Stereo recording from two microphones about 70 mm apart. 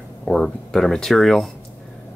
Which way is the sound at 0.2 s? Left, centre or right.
Centre.